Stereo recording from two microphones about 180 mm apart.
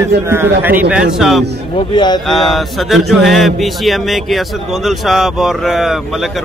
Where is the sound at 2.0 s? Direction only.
25° left (ahead or behind).